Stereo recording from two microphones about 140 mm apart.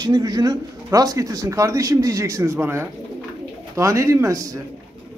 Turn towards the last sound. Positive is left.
turn(degrees=-25)  # may be behind; listen again after turning